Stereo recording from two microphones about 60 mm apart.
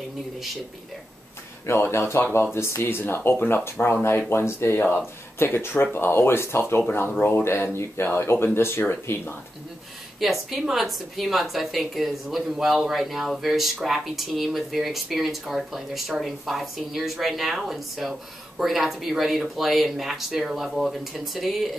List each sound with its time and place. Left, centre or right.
1.7 s speech: left
10.2 s speech: centre